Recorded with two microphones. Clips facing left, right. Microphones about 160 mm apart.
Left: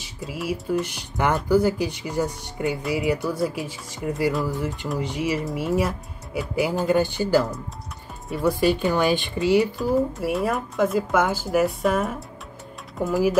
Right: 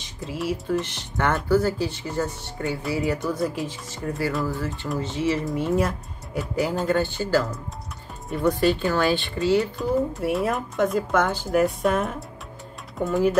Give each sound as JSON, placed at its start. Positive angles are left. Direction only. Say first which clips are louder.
{"t": 0.0, "sound": "speech", "louder": "right 1 dB", "side_deg": 5}
{"t": 5.4, "sound": "speech", "louder": "even", "side_deg": 0}
{"t": 9.8, "sound": "speech", "louder": "left 1 dB", "side_deg": 0}